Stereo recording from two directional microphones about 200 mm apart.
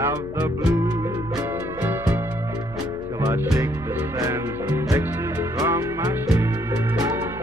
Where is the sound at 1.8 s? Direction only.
10° right (ahead or behind).